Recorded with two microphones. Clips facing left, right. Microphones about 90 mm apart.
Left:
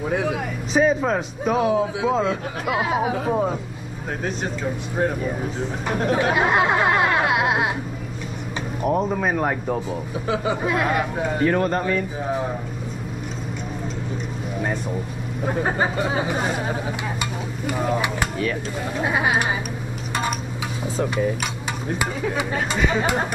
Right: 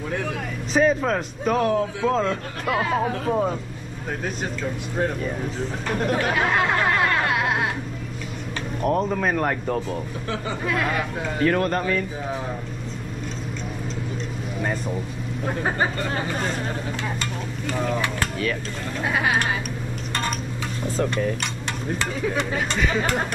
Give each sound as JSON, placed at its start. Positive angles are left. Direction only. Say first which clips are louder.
{"t": 0.1, "sound": "speech", "louder": "left 4 dB", "side_deg": 10}
{"t": 4.9, "sound": "speech", "louder": "left 2 dB", "side_deg": 10}
{"t": 6.3, "sound": "chatter", "louder": "left 3 dB", "side_deg": 15}
{"t": 8.8, "sound": "speech", "louder": "left 1 dB", "side_deg": 10}
{"t": 15.4, "sound": "speech", "louder": "left 2 dB", "side_deg": 5}
{"t": 20.8, "sound": "speech", "louder": "left 1 dB", "side_deg": 10}